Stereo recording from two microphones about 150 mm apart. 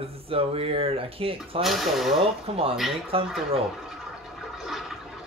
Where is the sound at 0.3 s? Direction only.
40° right (ahead or behind).